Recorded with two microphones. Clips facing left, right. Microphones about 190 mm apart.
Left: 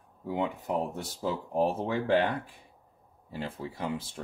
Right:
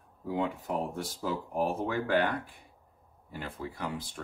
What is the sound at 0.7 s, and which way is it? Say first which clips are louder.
Speech: left 2 dB; 20° left (ahead or behind).